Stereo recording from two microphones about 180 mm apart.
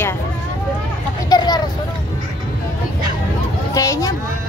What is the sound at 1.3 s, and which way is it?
Vehicle, 25° left (ahead or behind).